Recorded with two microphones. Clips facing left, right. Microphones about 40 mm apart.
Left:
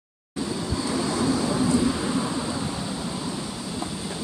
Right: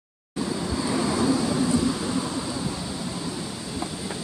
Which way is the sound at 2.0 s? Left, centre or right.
Centre.